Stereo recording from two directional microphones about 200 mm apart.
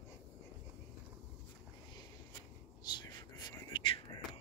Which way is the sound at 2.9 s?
20° left (ahead or behind).